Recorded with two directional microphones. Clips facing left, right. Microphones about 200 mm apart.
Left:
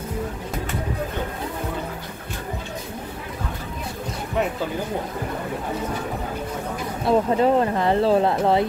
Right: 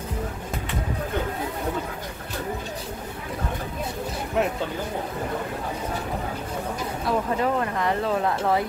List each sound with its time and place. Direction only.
7.1 s speech: 30° left (ahead or behind)